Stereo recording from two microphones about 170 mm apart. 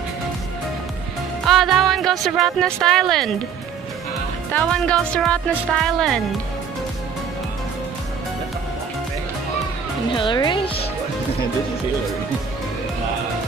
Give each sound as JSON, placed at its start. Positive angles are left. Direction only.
{"t": 1.5, "sound": "speech", "side_deg": 0}
{"t": 4.5, "sound": "speech", "side_deg": 5}
{"t": 10.1, "sound": "speech", "side_deg": 25}